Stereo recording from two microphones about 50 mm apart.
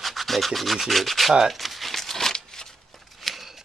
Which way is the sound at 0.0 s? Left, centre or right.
Centre.